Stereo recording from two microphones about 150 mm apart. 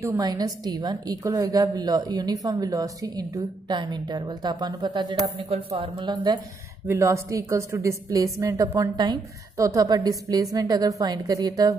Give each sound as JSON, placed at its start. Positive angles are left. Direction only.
{"t": 0.0, "sound": "a woman's voice", "side_deg": -20}
{"t": 6.9, "sound": "a woman's voice", "side_deg": -20}